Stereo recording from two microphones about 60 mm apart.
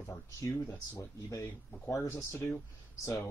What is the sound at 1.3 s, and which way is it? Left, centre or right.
Speech, left.